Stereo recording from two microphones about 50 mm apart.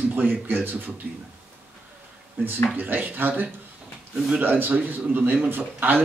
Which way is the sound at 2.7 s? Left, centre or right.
Right.